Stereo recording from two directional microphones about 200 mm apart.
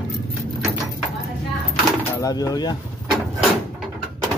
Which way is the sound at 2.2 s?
20° left (ahead or behind).